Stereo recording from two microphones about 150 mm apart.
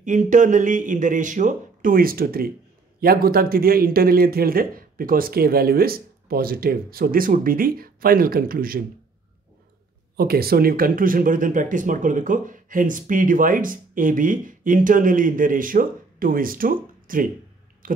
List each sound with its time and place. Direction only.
0.0 s speech: 55° right (ahead or behind); by 8.8 s 75° right (ahead or behind)
10.1 s speech: 90° right; by 18.0 s 65° right (ahead or behind)